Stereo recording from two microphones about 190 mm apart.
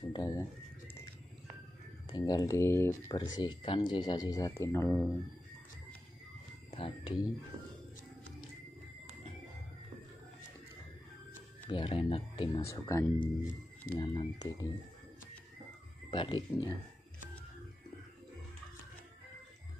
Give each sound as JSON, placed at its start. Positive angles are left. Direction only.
{"t": 0.1, "sound": "speech", "side_deg": 20}
{"t": 2.1, "sound": "speech", "side_deg": 20}
{"t": 3.2, "sound": "speech", "side_deg": 25}
{"t": 6.7, "sound": "speech", "side_deg": 30}
{"t": 11.6, "sound": "speech", "side_deg": 25}
{"t": 12.5, "sound": "speech", "side_deg": 15}
{"t": 16.1, "sound": "speech", "side_deg": 25}